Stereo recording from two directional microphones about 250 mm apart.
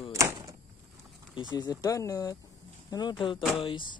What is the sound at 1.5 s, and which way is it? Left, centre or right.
Speech, centre.